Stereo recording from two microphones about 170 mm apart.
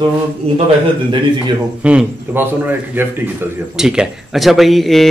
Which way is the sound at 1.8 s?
10° right (ahead or behind).